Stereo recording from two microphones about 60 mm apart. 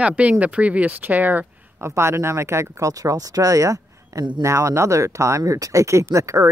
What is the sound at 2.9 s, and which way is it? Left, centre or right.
Speech, right.